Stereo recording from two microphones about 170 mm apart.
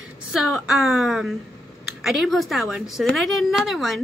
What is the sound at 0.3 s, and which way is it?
A woman's voice, centre (ahead or behind).